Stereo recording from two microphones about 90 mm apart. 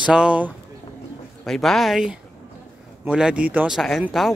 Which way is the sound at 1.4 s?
5° left (ahead or behind).